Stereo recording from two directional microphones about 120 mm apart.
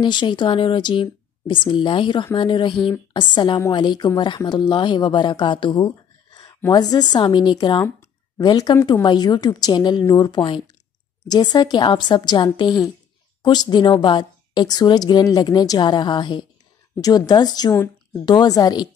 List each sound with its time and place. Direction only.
0.0 s a woman's voice: 40° left (ahead or behind)